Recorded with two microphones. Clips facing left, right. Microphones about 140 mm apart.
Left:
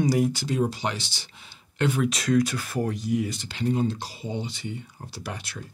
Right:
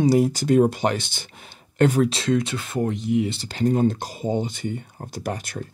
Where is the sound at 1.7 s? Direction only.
40° right (ahead or behind).